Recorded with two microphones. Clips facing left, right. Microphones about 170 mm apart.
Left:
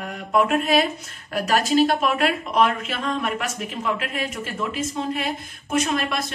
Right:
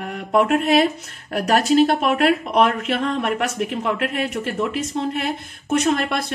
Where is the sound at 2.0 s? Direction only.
55° right (ahead or behind).